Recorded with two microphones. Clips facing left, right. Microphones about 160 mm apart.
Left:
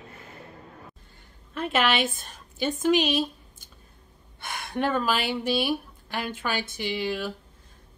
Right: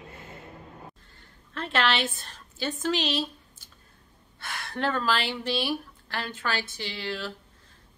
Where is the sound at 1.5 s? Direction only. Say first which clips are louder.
Left 2 dB; 10° left (ahead or behind).